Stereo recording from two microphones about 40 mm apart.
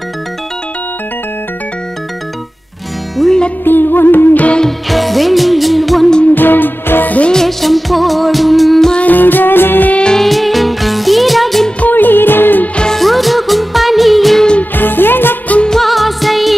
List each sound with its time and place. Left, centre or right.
3.2 s music: centre
3.6 s music: left
4.8 s music: centre
6.3 s music: left
7.3 s music: centre
9.0 s music: left
10.1 s music: centre
11.8 s music: left
12.9 s music of bollywood: centre
14.6 s music: left
15.7 s music: centre